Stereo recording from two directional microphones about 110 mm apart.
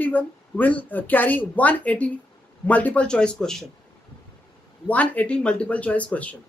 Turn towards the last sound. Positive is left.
turn(degrees=10)  # may be behind; listen again after turning